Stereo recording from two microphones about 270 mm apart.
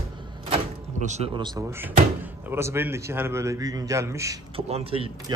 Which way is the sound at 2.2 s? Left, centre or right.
Centre.